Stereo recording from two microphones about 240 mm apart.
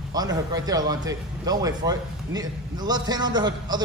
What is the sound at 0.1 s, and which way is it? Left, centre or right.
A man's voice, centre.